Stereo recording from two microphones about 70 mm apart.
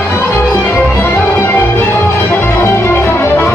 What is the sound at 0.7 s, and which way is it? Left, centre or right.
Music, left.